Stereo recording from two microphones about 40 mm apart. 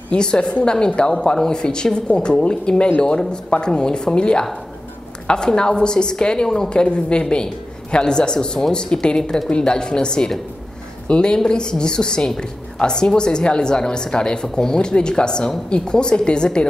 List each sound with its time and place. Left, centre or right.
0.1 s a woman's voice: left